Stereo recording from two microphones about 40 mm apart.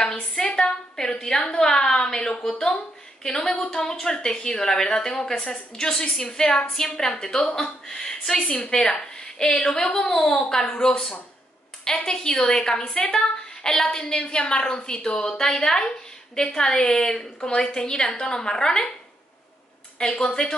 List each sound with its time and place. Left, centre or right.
0.0 s a sound: centre
3.3 s a woman's voice: centre
20.0 s a woman's voice: left